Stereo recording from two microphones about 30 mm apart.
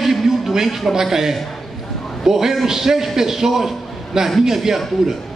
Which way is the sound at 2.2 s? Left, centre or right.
Centre.